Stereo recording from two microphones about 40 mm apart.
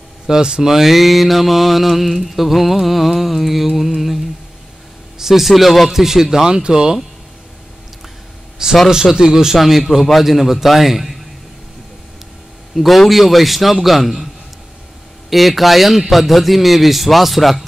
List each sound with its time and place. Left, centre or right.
0.3 s a man's voice: centre
0.7 s mantra: centre
5.2 s mantra: centre
5.9 s a man's voice: centre
8.6 s a man's voice: centre
9.6 s mantra: centre
12.7 s mantra: centre